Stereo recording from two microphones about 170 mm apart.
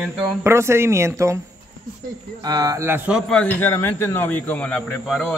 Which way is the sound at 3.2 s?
5° left (ahead or behind).